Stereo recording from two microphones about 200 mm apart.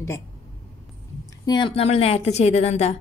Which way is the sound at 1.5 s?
25° left (ahead or behind).